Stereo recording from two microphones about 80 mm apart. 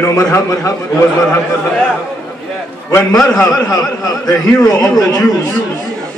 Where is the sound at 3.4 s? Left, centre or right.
Left.